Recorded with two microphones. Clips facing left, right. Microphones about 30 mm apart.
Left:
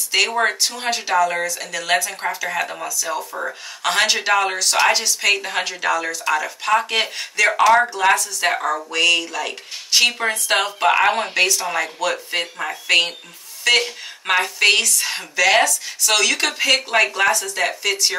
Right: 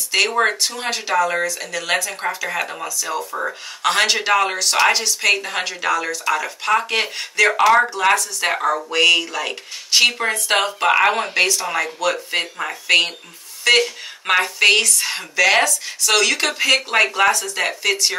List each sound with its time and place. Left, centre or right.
0.1 s speech: centre